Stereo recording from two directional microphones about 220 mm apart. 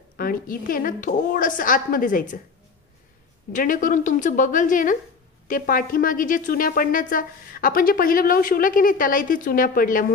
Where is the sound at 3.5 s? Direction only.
35° left (ahead or behind).